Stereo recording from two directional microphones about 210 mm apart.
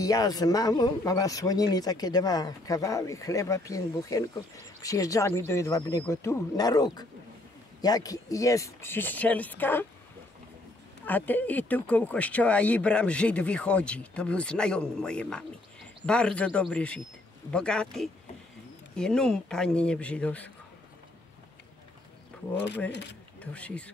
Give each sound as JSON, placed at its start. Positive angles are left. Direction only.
{"t": 0.0, "sound": "speech", "side_deg": 15}
{"t": 11.1, "sound": "speech", "side_deg": 10}
{"t": 23.4, "sound": "speech", "side_deg": 5}